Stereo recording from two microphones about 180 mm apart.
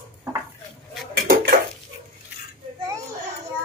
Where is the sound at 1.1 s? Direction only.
60° right (ahead or behind).